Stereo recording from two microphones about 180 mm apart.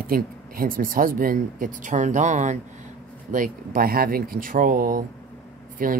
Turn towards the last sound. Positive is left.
turn(degrees=-50)  # may be behind; listen again after turning